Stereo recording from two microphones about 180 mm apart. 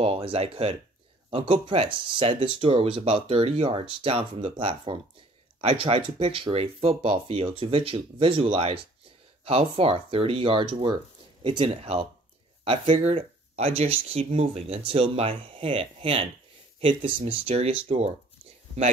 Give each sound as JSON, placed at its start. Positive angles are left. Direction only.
{"t": 0.0, "sound": "speech", "side_deg": -30}